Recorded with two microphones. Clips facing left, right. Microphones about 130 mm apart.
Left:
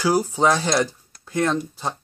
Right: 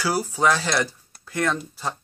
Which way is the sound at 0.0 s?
15° left (ahead or behind).